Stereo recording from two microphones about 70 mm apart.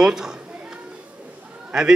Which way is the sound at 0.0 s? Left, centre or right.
Centre.